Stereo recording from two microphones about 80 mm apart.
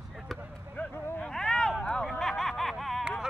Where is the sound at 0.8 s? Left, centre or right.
Centre.